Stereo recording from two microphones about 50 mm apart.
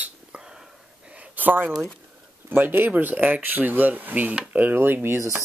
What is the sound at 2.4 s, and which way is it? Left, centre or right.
Speech, right.